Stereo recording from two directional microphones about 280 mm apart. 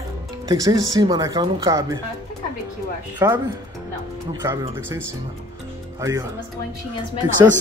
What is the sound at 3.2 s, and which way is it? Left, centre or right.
A man's voice, centre.